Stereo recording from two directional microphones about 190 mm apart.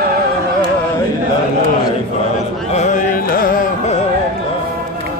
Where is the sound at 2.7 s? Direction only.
40° left (ahead or behind).